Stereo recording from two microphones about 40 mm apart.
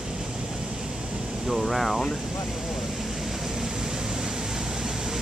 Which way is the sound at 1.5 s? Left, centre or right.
Centre.